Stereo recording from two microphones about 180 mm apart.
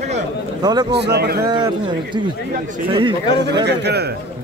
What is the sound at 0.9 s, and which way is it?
Speech, 65° right (ahead or behind).